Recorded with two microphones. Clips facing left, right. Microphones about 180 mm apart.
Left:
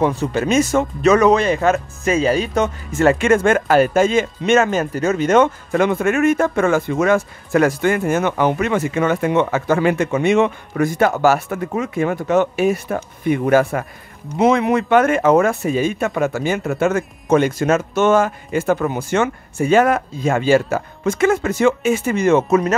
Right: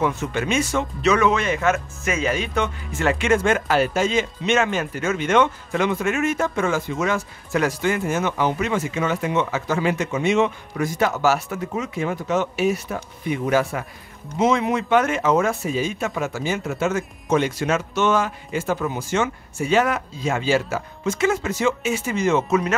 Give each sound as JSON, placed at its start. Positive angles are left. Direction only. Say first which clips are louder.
{"t": 0.0, "sound": "speech", "louder": "left 5 dB", "side_deg": 35}